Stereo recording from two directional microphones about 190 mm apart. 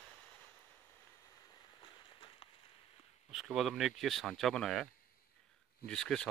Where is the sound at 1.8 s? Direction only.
25° left (ahead or behind).